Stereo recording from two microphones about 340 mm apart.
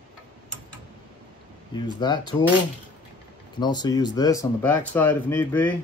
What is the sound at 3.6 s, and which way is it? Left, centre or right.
Speech, centre.